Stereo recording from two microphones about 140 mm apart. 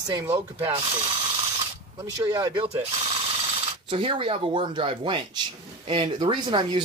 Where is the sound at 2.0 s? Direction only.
25° right (ahead or behind).